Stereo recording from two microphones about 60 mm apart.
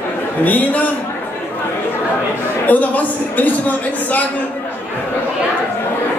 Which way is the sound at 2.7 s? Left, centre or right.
Left.